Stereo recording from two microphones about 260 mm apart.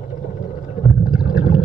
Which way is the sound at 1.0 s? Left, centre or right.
Centre.